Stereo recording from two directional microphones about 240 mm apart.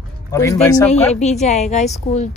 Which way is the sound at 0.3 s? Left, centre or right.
Centre.